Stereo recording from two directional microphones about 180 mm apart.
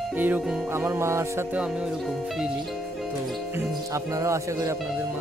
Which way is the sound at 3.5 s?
15° right (ahead or behind).